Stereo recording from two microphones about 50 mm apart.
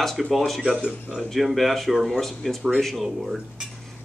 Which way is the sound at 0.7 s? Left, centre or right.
Right.